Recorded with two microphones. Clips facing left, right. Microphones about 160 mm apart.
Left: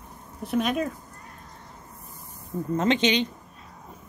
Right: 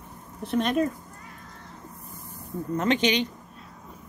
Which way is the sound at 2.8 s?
25° left (ahead or behind).